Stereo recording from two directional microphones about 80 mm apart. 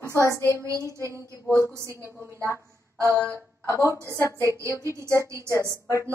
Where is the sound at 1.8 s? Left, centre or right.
Left.